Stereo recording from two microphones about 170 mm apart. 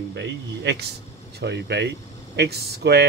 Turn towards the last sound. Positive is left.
turn(degrees=-70)  # may be behind; listen again after turning